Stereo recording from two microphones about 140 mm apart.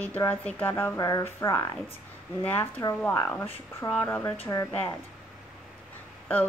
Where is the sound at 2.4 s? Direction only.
15° left (ahead or behind).